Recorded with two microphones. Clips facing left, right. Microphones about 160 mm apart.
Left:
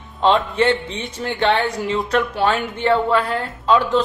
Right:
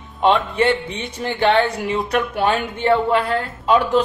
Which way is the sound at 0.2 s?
10° right (ahead or behind).